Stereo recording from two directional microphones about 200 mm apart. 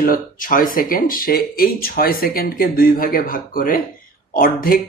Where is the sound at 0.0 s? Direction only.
45° left (ahead or behind).